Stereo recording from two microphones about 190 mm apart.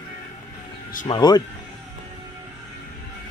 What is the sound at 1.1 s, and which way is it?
Speech, 20° left (ahead or behind).